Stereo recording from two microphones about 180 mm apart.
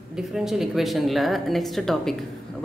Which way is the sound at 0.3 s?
Centre (ahead or behind).